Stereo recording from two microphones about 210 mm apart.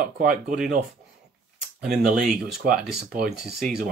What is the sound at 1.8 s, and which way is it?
Speech, 5° right (ahead or behind).